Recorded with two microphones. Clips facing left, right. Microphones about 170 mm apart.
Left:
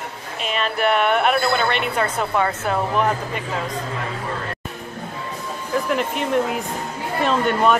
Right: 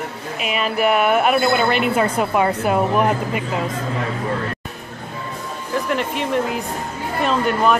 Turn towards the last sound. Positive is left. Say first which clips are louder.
# even
turn(degrees=0)  # may be behind; listen again after turning